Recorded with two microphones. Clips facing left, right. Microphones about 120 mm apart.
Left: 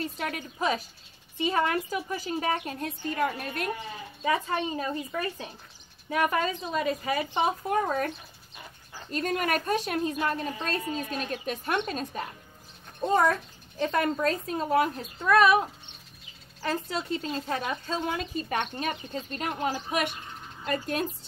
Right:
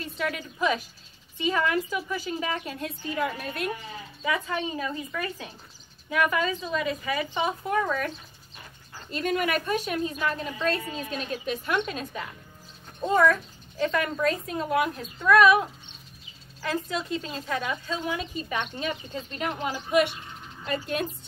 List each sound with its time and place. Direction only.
0.0 s a woman's voice: 50° left (ahead or behind)
9.1 s a woman's voice: 45° left (ahead or behind)
16.6 s a woman's voice: 35° left (ahead or behind)